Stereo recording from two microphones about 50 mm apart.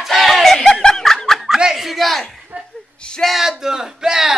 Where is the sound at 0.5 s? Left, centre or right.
Centre.